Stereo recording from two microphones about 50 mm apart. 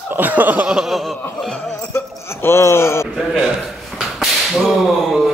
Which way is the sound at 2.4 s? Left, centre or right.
Left.